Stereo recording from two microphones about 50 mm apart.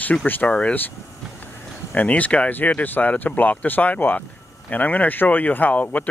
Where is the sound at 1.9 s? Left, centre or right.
Left.